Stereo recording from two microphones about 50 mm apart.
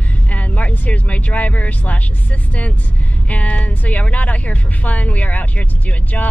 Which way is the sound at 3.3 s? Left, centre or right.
Left.